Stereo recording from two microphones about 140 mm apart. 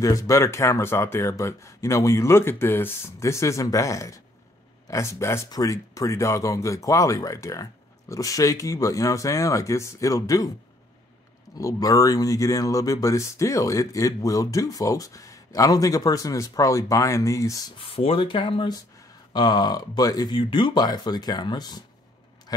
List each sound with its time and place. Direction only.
0.0 s speech: 25° left (ahead or behind)
11.5 s speech: 25° left (ahead or behind)
17.7 s speech: 40° left (ahead or behind)